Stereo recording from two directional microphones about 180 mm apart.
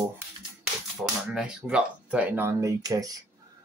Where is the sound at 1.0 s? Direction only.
5° right (ahead or behind); by 3.2 s 20° right (ahead or behind).